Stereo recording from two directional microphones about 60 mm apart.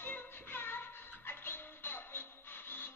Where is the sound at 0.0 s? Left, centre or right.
Left.